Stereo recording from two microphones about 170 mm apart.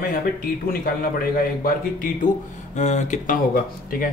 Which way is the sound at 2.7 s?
45° left (ahead or behind).